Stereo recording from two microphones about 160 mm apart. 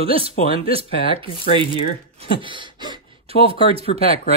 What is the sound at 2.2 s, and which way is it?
Gasp, 30° right (ahead or behind).